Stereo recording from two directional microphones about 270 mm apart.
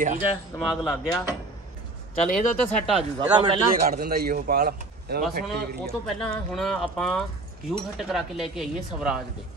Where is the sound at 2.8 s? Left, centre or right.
Centre.